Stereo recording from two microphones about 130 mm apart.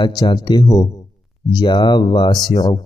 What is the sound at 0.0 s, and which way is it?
Speech, 30° left (ahead or behind).